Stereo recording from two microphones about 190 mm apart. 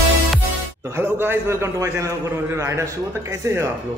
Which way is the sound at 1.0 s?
10° right (ahead or behind).